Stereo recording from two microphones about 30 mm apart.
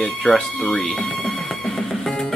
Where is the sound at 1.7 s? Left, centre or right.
Left.